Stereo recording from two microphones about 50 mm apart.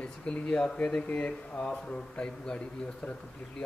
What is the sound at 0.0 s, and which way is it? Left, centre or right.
Speech, left.